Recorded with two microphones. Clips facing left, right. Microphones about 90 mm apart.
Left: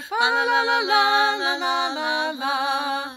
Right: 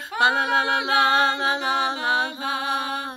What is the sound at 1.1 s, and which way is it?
Music, 50° right (ahead or behind).